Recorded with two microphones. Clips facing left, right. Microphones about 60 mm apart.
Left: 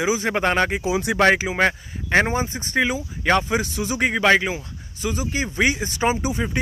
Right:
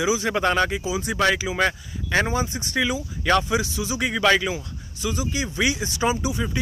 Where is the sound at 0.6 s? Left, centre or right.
Left.